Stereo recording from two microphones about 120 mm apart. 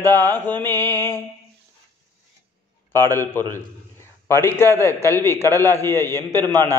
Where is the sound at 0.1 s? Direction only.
20° left (ahead or behind).